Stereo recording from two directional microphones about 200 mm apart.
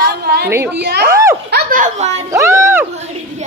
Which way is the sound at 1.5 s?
40° right (ahead or behind).